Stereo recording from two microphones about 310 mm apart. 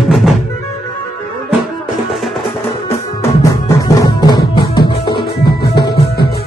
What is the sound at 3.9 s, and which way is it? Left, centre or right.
Music, centre.